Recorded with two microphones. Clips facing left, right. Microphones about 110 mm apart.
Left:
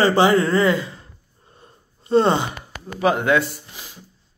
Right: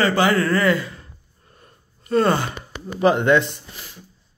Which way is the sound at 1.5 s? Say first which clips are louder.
Left 2 dB; 25° left (ahead or behind).